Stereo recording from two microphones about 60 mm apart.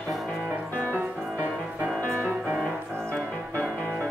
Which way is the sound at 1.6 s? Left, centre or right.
Right.